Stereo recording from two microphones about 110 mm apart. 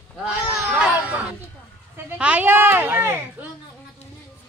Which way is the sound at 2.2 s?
15° right (ahead or behind).